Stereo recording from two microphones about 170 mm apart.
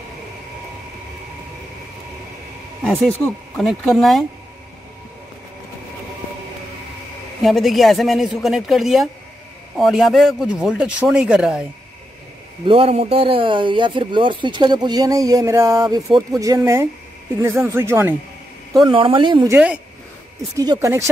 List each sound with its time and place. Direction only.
2.8 s a man's voice: 5° left (ahead or behind)
7.4 s a man's voice: centre (ahead or behind)
12.6 s speech: 35° right (ahead or behind); by 18.1 s 15° right (ahead or behind)
18.9 s speech: 30° right (ahead or behind)
19.4 s speech: 10° right (ahead or behind)